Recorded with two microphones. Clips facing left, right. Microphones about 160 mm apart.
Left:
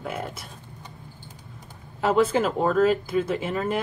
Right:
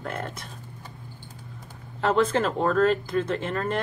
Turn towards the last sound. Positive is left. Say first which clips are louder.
# left 1 dB
turn(degrees=5)  # may be behind; listen again after turning